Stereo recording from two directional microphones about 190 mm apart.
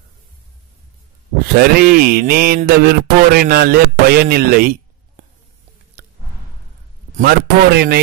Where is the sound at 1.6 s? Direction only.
50° right (ahead or behind).